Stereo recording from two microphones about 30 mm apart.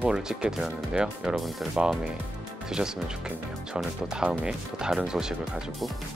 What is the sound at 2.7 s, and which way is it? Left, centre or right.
Speech, right.